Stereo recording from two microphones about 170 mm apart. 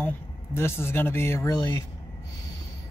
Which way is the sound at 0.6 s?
15° left (ahead or behind).